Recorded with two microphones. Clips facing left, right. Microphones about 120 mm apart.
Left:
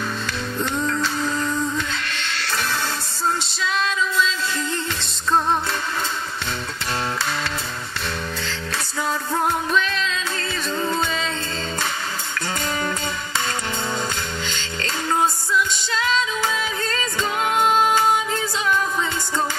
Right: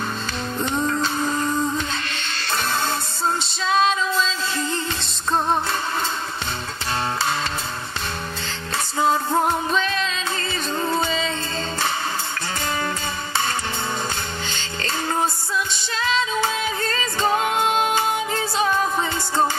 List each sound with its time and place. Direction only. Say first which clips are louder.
0.6 s music: right 1 dB; 20° right (ahead or behind)
3.6 s music: right 4 dB; 30° right (ahead or behind)
8.5 s music: even; 25° right (ahead or behind)
17.0 s music: right 4 dB; 30° right (ahead or behind)